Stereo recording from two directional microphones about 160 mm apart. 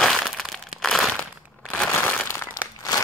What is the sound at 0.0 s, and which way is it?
Crumpling, centre (ahead or behind).